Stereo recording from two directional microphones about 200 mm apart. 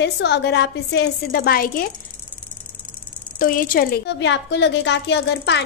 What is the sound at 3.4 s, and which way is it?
A woman's voice, 45° left (ahead or behind).